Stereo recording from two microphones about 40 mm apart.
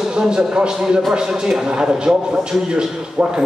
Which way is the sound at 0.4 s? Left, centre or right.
Centre.